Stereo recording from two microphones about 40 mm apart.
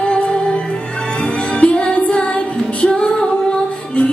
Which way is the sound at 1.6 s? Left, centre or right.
Left.